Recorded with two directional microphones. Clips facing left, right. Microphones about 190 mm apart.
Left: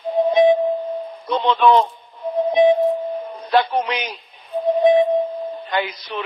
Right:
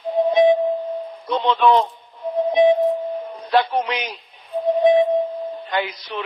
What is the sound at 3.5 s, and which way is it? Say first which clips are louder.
Speech: left 1 dB; 50° left (ahead or behind).